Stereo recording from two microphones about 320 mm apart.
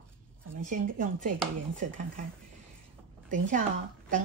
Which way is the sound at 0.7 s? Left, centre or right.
Right.